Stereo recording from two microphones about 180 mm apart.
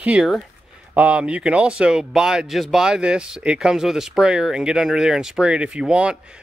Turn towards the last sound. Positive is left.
turn(degrees=-5)  # may be behind; listen again after turning